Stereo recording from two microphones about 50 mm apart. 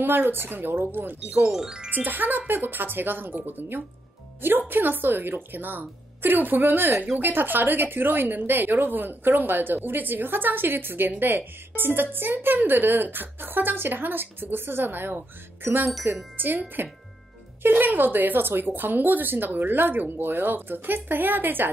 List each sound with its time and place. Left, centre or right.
0.0 s speech: right
1.5 s speech: centre
1.9 s speech: right
16.3 s speech: right